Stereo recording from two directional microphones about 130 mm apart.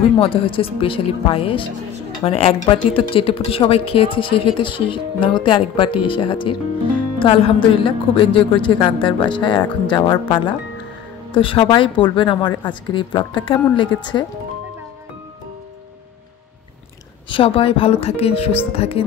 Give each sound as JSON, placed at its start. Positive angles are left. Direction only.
{"t": 0.2, "sound": "a woman's voice", "side_deg": 45}
{"t": 17.3, "sound": "a woman's voice", "side_deg": 45}